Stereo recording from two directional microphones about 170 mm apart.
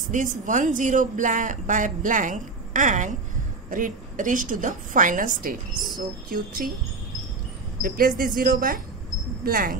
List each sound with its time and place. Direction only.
0.1 s speech: 50° right (ahead or behind)
7.8 s speech: 55° right (ahead or behind)